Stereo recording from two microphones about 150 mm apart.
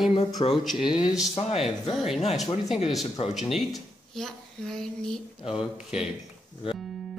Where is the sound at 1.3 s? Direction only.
45° left (ahead or behind).